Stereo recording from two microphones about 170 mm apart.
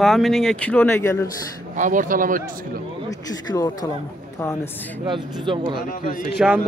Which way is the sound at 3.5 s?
20° left (ahead or behind).